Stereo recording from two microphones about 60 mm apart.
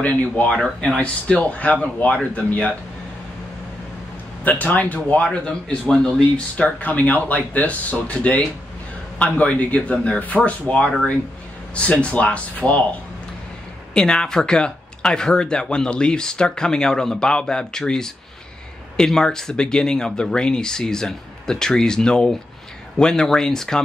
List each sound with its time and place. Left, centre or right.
0.0 s speech: left
0.7 s speech: centre
4.5 s speech: left
5.4 s speech: centre
13.9 s speech: centre